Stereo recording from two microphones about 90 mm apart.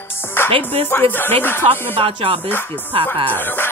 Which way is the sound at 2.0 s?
75° right (ahead or behind).